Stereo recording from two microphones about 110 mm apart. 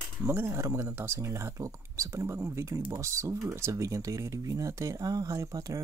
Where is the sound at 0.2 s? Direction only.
20° right (ahead or behind).